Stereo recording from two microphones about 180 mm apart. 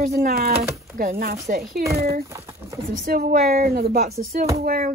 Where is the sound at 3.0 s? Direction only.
55° right (ahead or behind).